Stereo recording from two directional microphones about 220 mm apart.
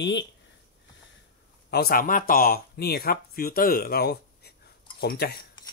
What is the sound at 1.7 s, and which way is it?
Speech, 40° left (ahead or behind).